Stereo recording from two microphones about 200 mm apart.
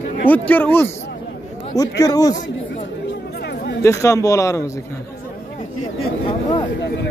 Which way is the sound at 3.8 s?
15° left (ahead or behind).